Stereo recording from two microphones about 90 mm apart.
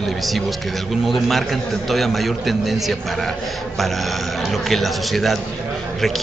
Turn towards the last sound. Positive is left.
turn(degrees=0)  # may be behind; listen again after turning